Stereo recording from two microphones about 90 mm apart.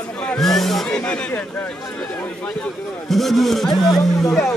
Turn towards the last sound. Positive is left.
turn(degrees=5)  # may be behind; listen again after turning